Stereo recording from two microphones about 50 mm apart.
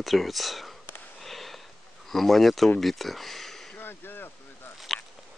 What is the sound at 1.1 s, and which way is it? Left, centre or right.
Sniff, centre.